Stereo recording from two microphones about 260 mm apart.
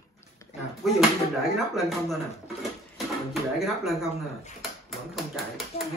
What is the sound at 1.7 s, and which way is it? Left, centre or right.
Speech, centre.